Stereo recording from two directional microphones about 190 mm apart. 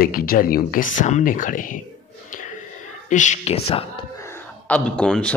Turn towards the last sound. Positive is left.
turn(degrees=5)  # may be behind; listen again after turning